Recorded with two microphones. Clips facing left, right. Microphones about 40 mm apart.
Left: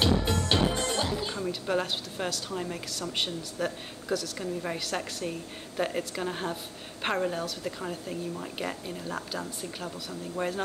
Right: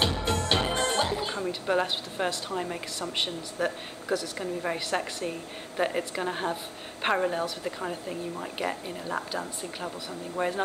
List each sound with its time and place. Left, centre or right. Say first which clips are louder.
0.3 s music: even; right
1.2 s a woman's voice: right 2 dB; centre